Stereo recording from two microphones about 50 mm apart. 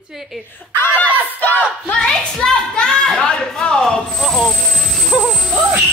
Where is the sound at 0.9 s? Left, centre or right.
Left.